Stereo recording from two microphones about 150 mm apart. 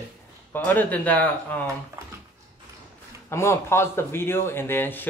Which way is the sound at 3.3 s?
20° left (ahead or behind).